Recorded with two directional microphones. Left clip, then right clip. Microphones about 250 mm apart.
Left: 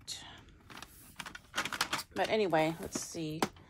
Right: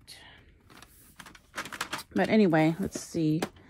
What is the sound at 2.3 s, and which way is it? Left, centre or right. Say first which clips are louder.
Speech: right 6 dB; right.